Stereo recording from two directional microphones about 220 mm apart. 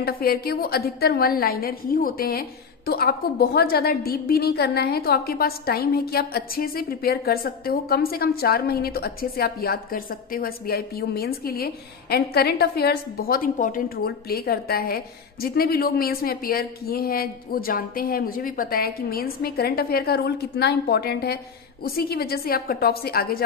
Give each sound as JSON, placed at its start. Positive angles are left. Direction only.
{"t": 0.0, "sound": "a woman's voice", "side_deg": 45}